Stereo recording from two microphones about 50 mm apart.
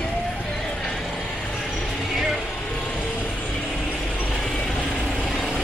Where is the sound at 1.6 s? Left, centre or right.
Centre.